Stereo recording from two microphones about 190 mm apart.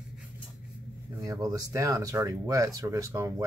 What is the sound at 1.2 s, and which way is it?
Speech, 20° right (ahead or behind).